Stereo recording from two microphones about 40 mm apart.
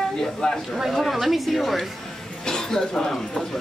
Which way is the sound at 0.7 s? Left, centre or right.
Centre.